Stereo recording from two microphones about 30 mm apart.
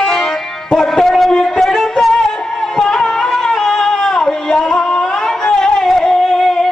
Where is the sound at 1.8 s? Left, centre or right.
Centre.